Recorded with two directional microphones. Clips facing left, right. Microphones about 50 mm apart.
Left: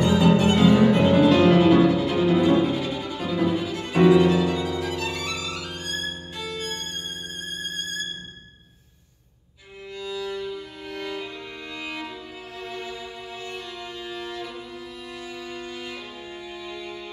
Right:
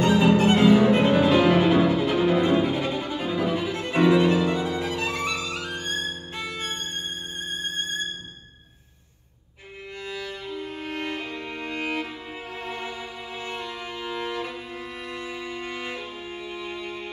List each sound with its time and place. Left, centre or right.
0.2 s music: right
4.1 s violin: right
9.9 s music: right